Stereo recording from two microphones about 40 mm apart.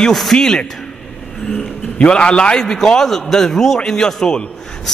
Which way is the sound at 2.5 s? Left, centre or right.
Centre.